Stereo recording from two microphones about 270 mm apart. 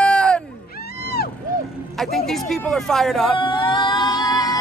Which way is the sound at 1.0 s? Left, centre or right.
Left.